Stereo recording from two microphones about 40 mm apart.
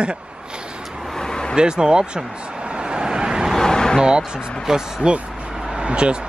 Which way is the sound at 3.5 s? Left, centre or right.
Centre.